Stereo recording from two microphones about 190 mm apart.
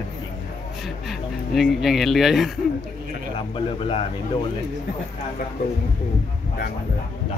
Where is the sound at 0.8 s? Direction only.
Centre (ahead or behind).